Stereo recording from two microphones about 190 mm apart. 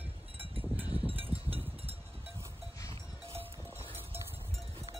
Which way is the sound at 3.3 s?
30° right (ahead or behind).